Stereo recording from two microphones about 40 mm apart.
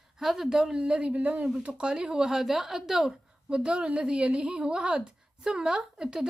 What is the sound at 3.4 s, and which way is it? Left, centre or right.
A woman's voice, right.